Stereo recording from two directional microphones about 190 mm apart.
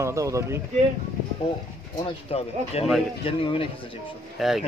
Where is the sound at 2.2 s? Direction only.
30° left (ahead or behind).